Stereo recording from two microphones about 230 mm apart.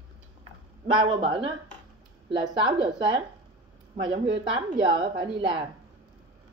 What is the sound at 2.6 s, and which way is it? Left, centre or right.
A woman's voice, centre.